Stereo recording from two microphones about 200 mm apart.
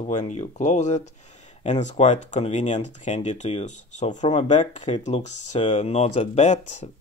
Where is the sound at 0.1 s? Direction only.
35° left (ahead or behind).